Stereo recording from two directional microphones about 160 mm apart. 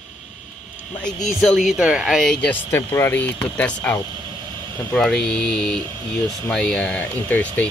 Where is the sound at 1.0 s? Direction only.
Centre (ahead or behind).